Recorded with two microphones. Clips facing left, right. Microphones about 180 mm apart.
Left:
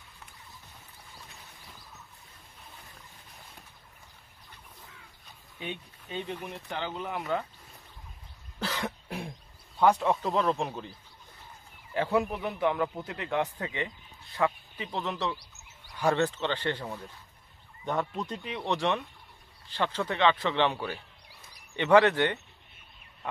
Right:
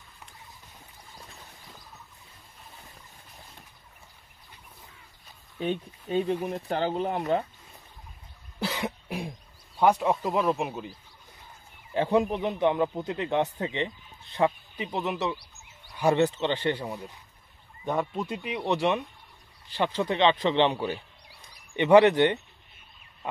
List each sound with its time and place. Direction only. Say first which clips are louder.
5.6 s speech: right 9 dB; 40° right (ahead or behind)
8.5 s cough: right 3 dB; 15° right (ahead or behind)
9.8 s speech: right 1 dB; 15° right (ahead or behind)
11.9 s a man's voice: right 4 dB; 20° right (ahead or behind)